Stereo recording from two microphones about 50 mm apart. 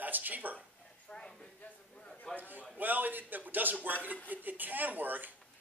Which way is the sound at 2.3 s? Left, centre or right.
Right.